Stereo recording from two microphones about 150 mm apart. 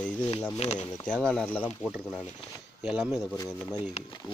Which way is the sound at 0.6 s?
45° left (ahead or behind).